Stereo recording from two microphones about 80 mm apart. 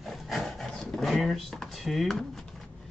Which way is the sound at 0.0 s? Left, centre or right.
Centre.